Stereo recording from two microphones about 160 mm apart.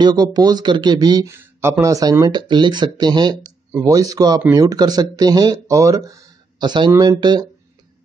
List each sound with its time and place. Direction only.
0.0 s speech: 25° right (ahead or behind)